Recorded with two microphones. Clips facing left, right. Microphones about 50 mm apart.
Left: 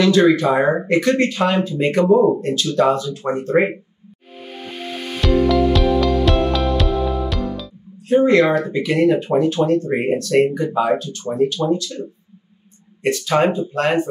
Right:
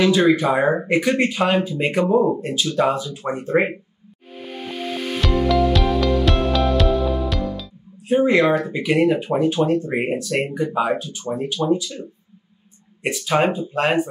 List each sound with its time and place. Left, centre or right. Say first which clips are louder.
0.0 s speech: left 2 dB; centre
5.2 s music: left 3 dB; centre
8.1 s speech: left 2 dB; centre
13.0 s speech: left 2 dB; centre